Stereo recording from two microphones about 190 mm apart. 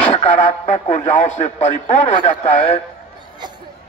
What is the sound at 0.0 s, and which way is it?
Speech, 30° left (ahead or behind).